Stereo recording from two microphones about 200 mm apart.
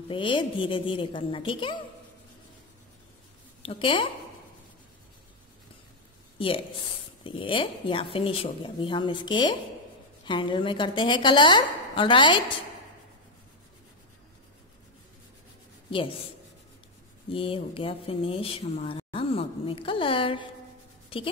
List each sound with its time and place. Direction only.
0.1 s speech: 25° left (ahead or behind)
3.6 s speech: 25° left (ahead or behind)
6.3 s speech: 25° left (ahead or behind)
15.9 s speech: 25° left (ahead or behind)
17.3 s speech: 25° left (ahead or behind)